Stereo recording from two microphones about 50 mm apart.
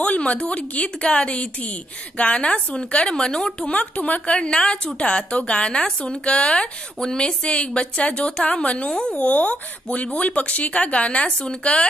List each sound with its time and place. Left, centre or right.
0.0 s a woman's voice: left